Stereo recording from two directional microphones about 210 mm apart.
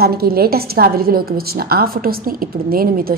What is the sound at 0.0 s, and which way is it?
A woman's voice, 45° right (ahead or behind).